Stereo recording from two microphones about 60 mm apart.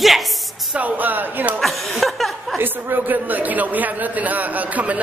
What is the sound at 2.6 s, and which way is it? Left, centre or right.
Speech, right.